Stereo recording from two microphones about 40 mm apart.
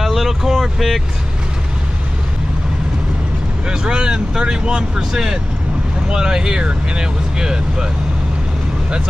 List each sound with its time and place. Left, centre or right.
0.0 s vehicle: centre
3.6 s speech: right